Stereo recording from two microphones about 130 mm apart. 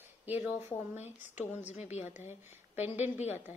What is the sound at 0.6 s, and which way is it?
A woman's voice, 60° left (ahead or behind).